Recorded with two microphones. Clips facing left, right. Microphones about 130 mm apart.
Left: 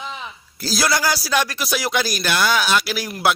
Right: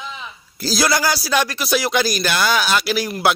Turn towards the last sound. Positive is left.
turn(degrees=0)  # may be behind; listen again after turning